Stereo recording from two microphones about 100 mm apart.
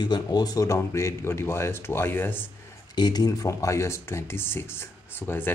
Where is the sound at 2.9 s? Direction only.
45° left (ahead or behind).